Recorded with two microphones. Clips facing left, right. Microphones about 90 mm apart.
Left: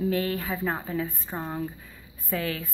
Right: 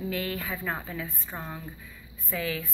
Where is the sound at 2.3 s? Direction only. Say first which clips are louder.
Left 2 dB; 45° left (ahead or behind).